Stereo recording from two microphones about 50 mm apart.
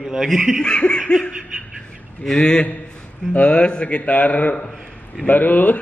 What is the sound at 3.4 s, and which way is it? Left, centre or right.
A man's voice, left.